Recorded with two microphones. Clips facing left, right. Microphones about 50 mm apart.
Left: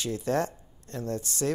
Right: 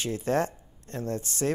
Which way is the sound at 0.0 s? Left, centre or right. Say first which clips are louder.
Right 1 dB; right.